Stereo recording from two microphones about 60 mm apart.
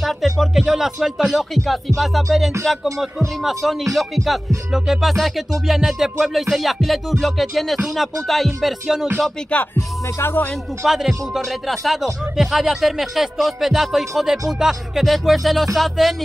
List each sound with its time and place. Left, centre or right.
0.0 s speech: centre
10.2 s speech: left
10.9 s speech: centre